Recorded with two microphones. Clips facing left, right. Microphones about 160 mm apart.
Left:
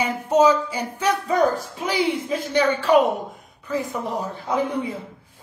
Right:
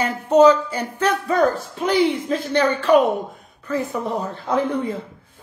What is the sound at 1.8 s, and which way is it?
Speech, 55° right (ahead or behind).